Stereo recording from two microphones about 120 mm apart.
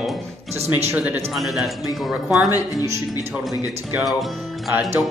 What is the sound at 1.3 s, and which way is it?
Speech, centre (ahead or behind).